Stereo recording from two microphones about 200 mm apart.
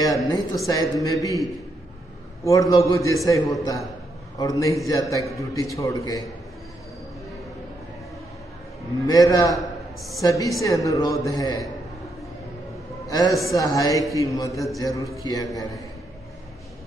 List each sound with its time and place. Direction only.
0.0 s speech: 20° left (ahead or behind)
2.4 s speech: 15° left (ahead or behind)
9.0 s speech: 20° left (ahead or behind)
13.1 s speech: 20° left (ahead or behind)